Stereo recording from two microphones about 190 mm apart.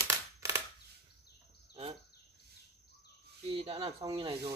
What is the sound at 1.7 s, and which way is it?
Insect, 30° right (ahead or behind).